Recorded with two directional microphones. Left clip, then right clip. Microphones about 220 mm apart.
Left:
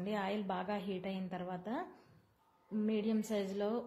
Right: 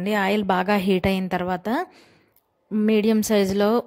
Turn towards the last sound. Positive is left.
turn(degrees=-50)  # may be behind; listen again after turning